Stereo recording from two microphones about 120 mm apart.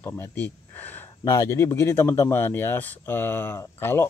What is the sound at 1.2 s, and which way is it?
Speech, 25° left (ahead or behind).